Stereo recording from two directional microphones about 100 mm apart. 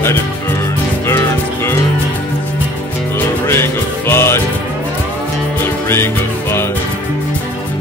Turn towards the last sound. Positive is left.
turn(degrees=25)  # may be behind; listen again after turning